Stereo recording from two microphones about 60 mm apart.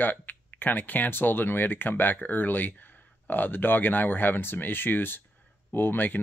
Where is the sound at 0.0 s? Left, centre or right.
Left.